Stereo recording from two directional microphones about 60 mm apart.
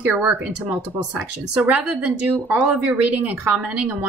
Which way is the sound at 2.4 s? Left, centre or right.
Right.